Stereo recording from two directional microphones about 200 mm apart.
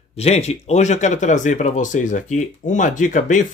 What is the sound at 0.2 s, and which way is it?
Speech, 30° left (ahead or behind).